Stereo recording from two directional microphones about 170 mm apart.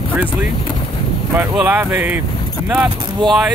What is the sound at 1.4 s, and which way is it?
Speech, 10° right (ahead or behind).